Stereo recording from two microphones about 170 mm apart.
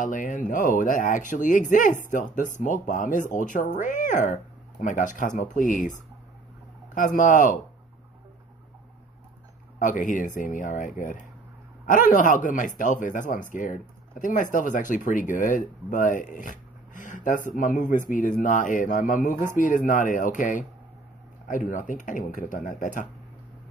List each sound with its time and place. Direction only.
0.0 s speech: 50° left (ahead or behind)
9.8 s speech: 50° left (ahead or behind)